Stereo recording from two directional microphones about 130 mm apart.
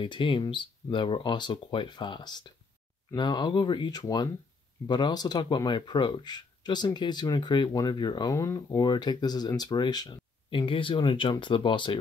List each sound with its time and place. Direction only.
0.0 s speech: 40° left (ahead or behind)